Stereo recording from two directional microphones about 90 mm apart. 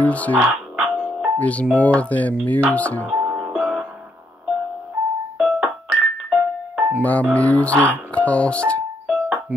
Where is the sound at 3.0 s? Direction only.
10° right (ahead or behind).